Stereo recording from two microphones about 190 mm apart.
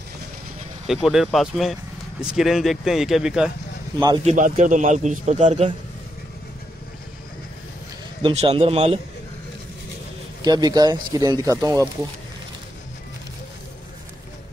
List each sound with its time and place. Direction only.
0.8 s speech: centre (ahead or behind)
4.2 s a man's voice: 40° right (ahead or behind)
8.2 s a man's voice: 30° right (ahead or behind)
10.4 s speech: 20° right (ahead or behind)